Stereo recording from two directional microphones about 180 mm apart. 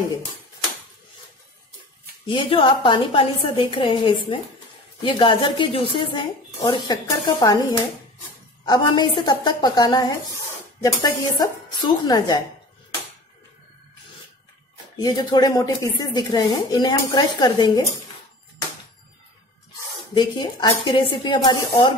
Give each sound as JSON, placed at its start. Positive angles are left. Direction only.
{"t": 2.2, "sound": "speech", "side_deg": 25}
{"t": 8.6, "sound": "speech", "side_deg": 25}
{"t": 15.0, "sound": "speech", "side_deg": 25}
{"t": 20.2, "sound": "speech", "side_deg": 25}